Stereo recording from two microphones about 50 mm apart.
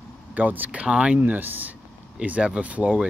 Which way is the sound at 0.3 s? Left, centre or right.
Right.